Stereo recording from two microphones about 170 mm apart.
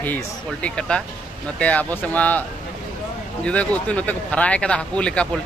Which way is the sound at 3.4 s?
5° left (ahead or behind).